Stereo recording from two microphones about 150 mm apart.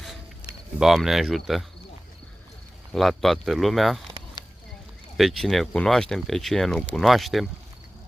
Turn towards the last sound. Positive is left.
turn(degrees=0)  # may be behind; listen again after turning